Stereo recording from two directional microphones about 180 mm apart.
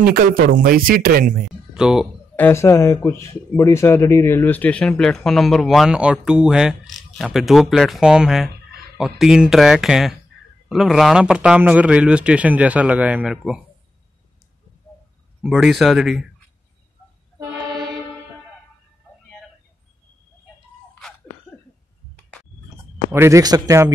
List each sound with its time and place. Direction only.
0.0 s speech: 55° right (ahead or behind)
1.7 s speech: 5° right (ahead or behind)
2.3 s speech: 15° left (ahead or behind); by 13.6 s 5° right (ahead or behind)
15.4 s speech: centre (ahead or behind)
23.1 s speech: 15° right (ahead or behind)